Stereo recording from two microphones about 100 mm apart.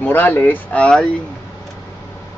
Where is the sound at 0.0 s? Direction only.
20° left (ahead or behind).